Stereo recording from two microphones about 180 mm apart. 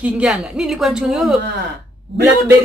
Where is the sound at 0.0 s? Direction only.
5° right (ahead or behind).